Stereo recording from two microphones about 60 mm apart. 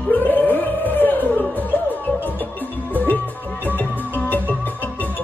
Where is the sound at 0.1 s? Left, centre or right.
Left.